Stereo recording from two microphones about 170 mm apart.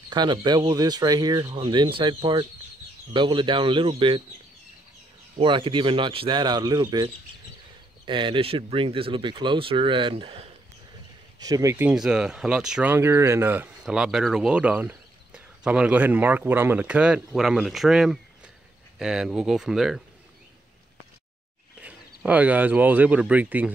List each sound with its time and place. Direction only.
0.1 s speech: 25° right (ahead or behind)
5.4 s speech: 30° right (ahead or behind)
11.3 s speech: 20° right (ahead or behind)
11.7 s speech: 5° right (ahead or behind)
21.8 s speech: 10° right (ahead or behind)